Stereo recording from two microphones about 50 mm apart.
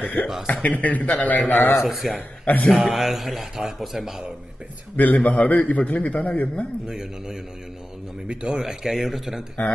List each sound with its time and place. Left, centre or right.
0.0 s speech: left
1.9 s a man's voice: centre
4.9 s a man's voice: left
6.9 s a man's voice: centre